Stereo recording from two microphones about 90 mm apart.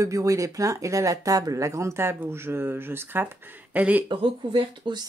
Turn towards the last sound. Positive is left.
turn(degrees=-70)  # may be behind; listen again after turning